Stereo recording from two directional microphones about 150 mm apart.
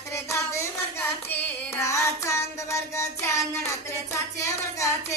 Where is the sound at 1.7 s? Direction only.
20° left (ahead or behind).